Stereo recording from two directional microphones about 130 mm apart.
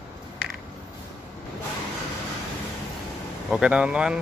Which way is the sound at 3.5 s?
5° right (ahead or behind).